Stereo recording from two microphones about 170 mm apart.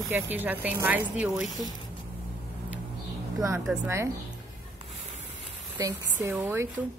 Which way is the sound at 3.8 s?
15° right (ahead or behind).